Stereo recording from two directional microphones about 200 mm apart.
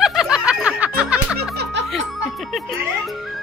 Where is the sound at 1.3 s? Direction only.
55° right (ahead or behind).